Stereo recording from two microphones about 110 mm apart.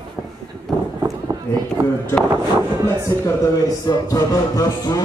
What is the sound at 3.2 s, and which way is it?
Speech, 30° left (ahead or behind).